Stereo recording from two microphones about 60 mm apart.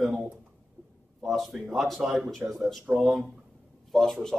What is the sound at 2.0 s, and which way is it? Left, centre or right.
Speech, centre.